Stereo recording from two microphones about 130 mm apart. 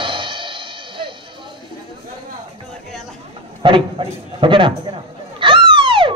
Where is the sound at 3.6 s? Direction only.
40° right (ahead or behind).